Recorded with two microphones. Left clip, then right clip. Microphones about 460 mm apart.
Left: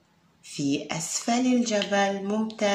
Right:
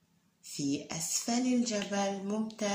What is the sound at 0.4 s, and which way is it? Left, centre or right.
A woman's voice, left.